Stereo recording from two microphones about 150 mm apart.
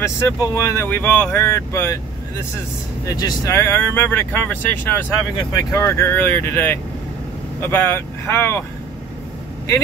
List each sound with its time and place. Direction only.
0.0 s speech: 20° left (ahead or behind)
3.1 s speech: 25° left (ahead or behind)